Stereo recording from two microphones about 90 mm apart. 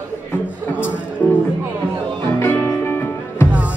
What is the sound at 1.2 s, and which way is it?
Music, 20° left (ahead or behind).